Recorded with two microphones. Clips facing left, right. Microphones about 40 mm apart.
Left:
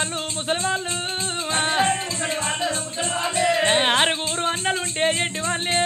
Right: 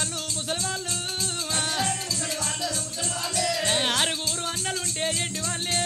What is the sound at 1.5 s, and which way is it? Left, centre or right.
Music, left.